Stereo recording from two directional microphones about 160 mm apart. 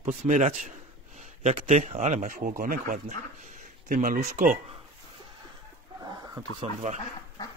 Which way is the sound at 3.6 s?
55° right (ahead or behind).